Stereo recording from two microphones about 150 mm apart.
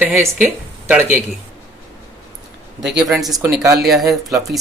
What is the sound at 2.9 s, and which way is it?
Speech, 5° right (ahead or behind).